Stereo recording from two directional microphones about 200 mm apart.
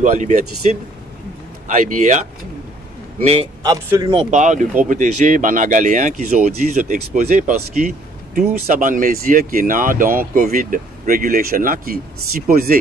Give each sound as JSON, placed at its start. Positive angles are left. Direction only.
{"t": 0.0, "sound": "speech", "side_deg": -35}
{"t": 3.6, "sound": "speech", "side_deg": -15}